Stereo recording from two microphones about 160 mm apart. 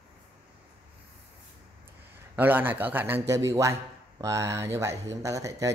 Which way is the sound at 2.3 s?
10° right (ahead or behind).